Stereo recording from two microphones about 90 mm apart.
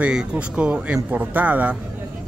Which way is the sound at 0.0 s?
10° right (ahead or behind).